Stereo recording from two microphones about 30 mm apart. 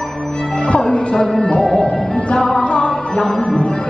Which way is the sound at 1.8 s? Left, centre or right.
Left.